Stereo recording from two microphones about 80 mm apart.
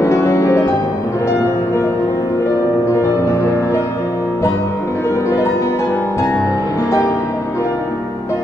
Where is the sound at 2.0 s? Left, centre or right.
Left.